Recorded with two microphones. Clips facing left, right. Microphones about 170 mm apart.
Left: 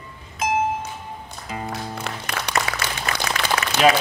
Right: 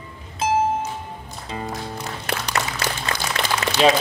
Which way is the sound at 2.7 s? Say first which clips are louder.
Left 1 dB; 90° left.